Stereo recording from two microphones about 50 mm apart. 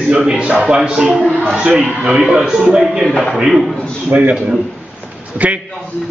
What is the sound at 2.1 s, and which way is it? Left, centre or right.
A man's voice, centre.